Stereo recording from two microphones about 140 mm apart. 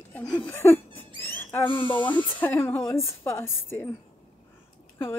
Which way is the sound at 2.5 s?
20° left (ahead or behind).